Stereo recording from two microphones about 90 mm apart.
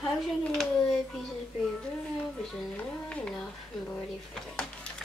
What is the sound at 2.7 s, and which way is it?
Speech, 10° left (ahead or behind).